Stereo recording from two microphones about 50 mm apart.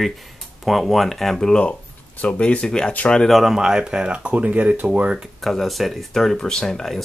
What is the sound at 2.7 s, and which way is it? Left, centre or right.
Speech, centre.